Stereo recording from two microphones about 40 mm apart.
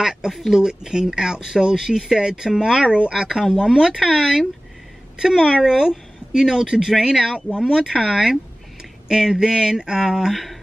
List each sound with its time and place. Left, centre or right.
0.0 s speech: centre
2.9 s speech: right
3.2 s speech: centre